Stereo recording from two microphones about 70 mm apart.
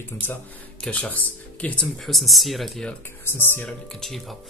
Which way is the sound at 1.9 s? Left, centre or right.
Centre.